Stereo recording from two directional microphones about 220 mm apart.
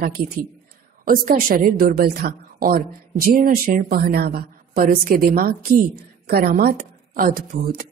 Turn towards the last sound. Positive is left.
turn(degrees=-40)  # may be behind; listen again after turning